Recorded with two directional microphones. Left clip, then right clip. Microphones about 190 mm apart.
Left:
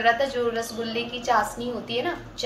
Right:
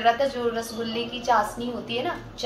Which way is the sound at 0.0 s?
15° left (ahead or behind).